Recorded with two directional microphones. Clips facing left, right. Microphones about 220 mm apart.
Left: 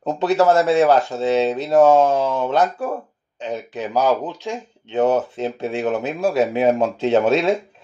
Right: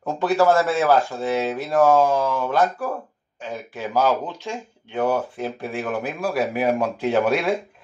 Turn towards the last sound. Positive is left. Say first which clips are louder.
# left 4 dB
turn(degrees=25)  # may be behind; listen again after turning